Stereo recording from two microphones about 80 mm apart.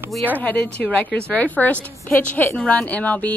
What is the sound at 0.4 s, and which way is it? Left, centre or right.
A woman's voice, centre.